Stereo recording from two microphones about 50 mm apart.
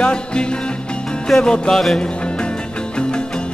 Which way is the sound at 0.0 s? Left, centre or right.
Centre.